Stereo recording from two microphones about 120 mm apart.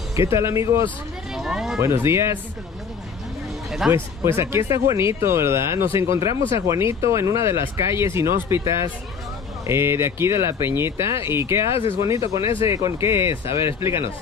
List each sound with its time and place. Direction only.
0.1 s speech: 25° right (ahead or behind)
1.3 s speech: centre (ahead or behind)
1.8 s speech: 20° right (ahead or behind)
3.9 s speech: 20° right (ahead or behind)
11.7 s speech: 50° left (ahead or behind)
12.1 s speech: 25° right (ahead or behind)